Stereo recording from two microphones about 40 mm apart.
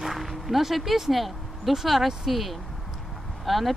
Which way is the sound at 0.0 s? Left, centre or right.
Centre.